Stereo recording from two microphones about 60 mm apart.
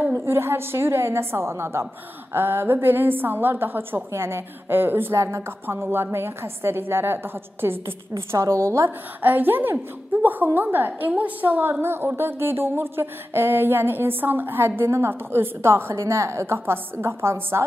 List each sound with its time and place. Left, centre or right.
0.1 s a woman's voice: right
5.1 s a woman's voice: right
8.3 s a woman's voice: right
9.2 s a woman's voice: right
11.8 s speech: right